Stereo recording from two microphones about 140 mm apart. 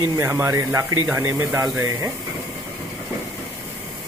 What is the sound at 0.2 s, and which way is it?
Speech, 20° right (ahead or behind).